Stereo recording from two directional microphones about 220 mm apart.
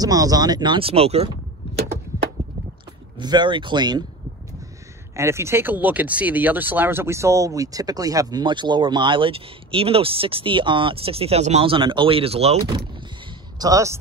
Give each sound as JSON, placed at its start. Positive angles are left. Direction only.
{"t": 0.0, "sound": "speech", "side_deg": -15}
{"t": 3.2, "sound": "speech", "side_deg": -20}
{"t": 5.1, "sound": "speech", "side_deg": -10}